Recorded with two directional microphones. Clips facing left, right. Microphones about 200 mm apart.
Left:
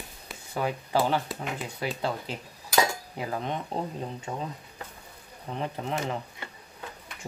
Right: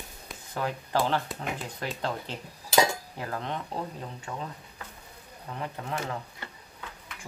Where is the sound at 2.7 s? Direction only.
15° right (ahead or behind).